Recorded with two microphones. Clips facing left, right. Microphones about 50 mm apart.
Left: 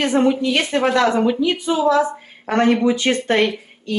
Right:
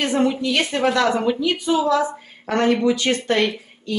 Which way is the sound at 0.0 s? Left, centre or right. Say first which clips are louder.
Left 3 dB; centre.